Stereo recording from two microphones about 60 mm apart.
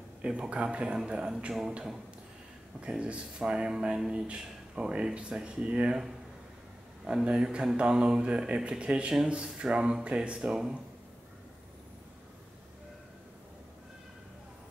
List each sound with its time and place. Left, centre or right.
0.2 s speech: centre
2.8 s speech: centre